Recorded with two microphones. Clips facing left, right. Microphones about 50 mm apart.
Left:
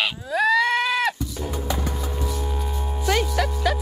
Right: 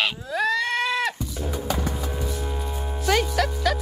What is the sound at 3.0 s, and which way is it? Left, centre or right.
Speech, centre.